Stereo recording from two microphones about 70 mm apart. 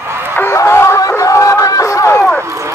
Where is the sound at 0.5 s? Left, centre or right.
Left.